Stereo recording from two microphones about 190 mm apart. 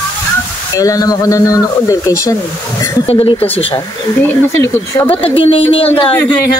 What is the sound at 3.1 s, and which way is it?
Speech, 30° left (ahead or behind).